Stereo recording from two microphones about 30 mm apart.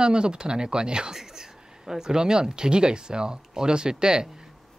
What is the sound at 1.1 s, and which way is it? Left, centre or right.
Speech, centre.